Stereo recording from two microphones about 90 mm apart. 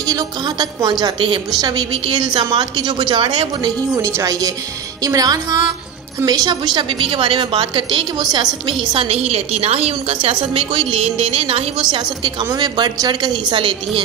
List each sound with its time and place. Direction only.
0.0 s a woman's voice: 45° right (ahead or behind); by 3.7 s 65° right (ahead or behind)
3.9 s a woman's voice: 40° right (ahead or behind); by 9.4 s 80° right
10.0 s speech: 90° right
12.5 s a woman's voice: 50° right (ahead or behind)